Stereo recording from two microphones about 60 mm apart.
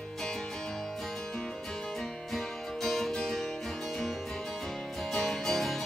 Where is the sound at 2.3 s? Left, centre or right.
Centre.